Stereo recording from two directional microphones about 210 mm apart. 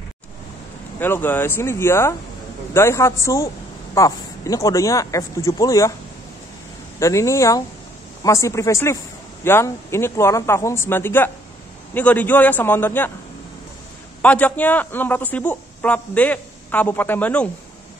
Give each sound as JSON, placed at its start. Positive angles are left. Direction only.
{"t": 0.9, "sound": "a man's voice", "side_deg": 10}
{"t": 7.0, "sound": "a man's voice", "side_deg": 15}
{"t": 14.2, "sound": "a man's voice", "side_deg": 5}